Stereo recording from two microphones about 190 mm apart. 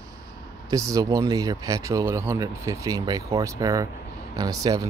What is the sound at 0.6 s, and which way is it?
Speech, 15° right (ahead or behind).